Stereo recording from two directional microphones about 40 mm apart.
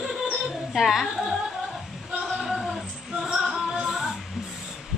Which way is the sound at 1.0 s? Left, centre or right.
Centre.